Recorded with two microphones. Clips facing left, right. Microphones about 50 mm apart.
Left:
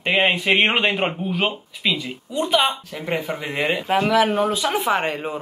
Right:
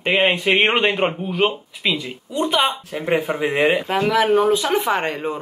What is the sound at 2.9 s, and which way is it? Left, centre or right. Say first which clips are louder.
Speech: right 5 dB; centre.